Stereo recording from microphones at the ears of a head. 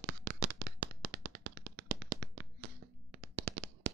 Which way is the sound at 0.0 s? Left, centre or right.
Right.